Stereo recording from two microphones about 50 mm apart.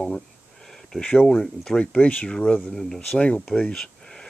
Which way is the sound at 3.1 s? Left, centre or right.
Left.